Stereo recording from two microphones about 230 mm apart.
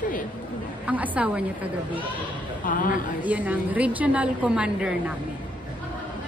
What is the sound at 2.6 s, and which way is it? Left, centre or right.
Speech, left.